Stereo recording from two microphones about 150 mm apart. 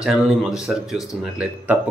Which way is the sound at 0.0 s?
5° right (ahead or behind).